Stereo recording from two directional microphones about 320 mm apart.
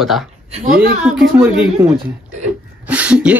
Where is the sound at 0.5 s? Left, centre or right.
Right.